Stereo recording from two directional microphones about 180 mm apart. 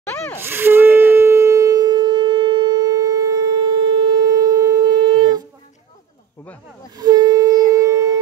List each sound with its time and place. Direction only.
0.0 s a sound: 10° left (ahead or behind)
0.4 s shofar: 10° right (ahead or behind)
7.0 s wind instrument: 20° right (ahead or behind)